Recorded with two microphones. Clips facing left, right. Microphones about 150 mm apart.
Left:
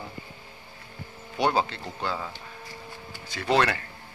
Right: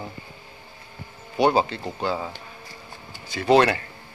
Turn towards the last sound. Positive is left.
turn(degrees=-20)  # may be behind; listen again after turning